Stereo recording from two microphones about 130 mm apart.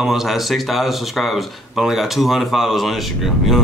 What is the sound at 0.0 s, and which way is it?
Speech, 5° right (ahead or behind).